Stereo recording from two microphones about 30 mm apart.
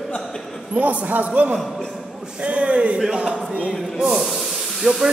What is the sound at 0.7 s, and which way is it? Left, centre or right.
Speech, right.